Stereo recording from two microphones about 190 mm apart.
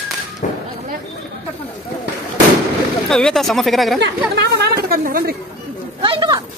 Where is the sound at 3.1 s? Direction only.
Centre (ahead or behind).